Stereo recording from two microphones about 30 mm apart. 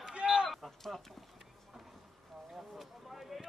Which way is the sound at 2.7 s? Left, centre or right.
Centre.